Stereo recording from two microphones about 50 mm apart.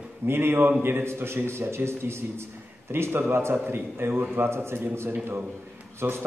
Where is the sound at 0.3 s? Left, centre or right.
Right.